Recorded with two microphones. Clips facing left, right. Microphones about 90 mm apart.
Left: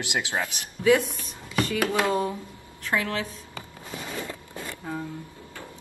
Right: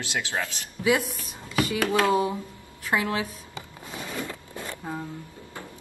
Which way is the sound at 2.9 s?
15° right (ahead or behind).